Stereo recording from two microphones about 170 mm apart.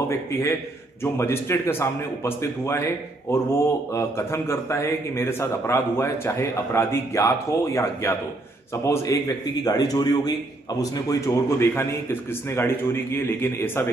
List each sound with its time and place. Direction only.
0.1 s a man's voice: 15° left (ahead or behind)